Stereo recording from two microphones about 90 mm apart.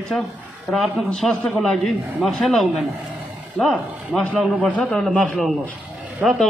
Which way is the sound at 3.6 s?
10° left (ahead or behind).